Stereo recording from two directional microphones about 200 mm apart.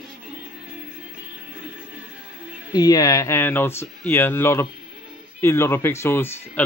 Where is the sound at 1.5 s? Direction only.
5° right (ahead or behind).